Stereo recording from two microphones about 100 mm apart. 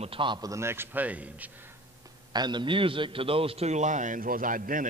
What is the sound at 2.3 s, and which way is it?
A man's voice, 45° right (ahead or behind).